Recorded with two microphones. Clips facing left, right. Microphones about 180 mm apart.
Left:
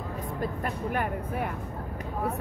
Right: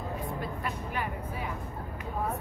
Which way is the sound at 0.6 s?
50° left (ahead or behind).